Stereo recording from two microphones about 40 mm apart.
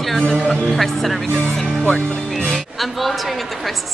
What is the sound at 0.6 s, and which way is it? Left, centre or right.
Speech, centre.